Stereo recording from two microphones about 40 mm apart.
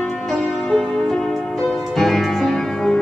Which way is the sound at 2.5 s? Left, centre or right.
Centre.